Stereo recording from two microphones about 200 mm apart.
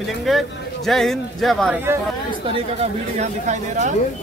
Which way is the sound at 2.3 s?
30° right (ahead or behind).